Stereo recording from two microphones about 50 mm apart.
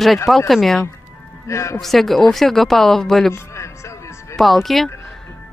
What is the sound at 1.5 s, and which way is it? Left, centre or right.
Speech, left.